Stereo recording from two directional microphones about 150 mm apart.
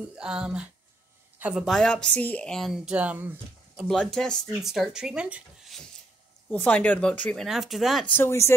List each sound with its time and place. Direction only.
0.2 s speech: 5° right (ahead or behind)
3.8 s speech: 5° left (ahead or behind)
6.5 s speech: 10° left (ahead or behind)
8.1 s speech: 15° left (ahead or behind)